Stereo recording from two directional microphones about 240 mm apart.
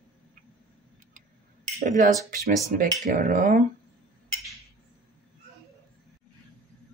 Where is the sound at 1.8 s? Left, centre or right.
Right.